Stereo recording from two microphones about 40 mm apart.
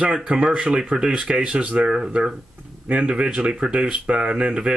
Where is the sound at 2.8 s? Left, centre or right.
Right.